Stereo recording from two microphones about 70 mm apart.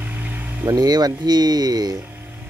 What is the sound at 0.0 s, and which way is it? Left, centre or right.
Vehicle, right.